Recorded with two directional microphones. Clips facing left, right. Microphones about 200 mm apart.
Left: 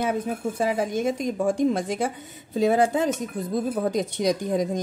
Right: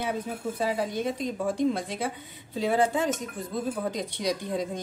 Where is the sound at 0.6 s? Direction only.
50° left (ahead or behind).